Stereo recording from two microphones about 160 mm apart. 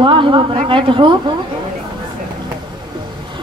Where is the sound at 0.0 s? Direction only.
30° right (ahead or behind).